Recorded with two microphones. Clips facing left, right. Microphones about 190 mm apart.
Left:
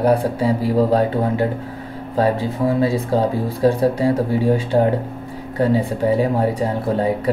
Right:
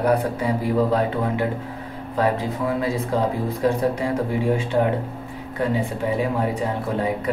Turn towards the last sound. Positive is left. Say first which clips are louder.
# left 4 dB
turn(degrees=35)  # may be behind; listen again after turning